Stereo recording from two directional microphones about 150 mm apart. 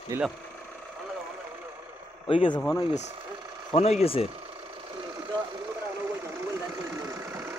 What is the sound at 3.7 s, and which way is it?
Speech, 40° left (ahead or behind).